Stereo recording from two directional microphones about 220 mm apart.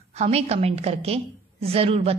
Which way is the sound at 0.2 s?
30° right (ahead or behind).